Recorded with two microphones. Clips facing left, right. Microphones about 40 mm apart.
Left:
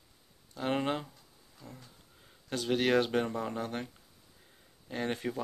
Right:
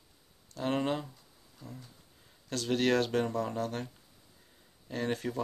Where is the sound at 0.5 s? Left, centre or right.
Centre.